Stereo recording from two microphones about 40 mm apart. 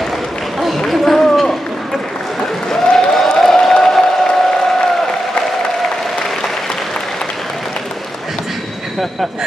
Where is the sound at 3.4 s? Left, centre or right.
Centre.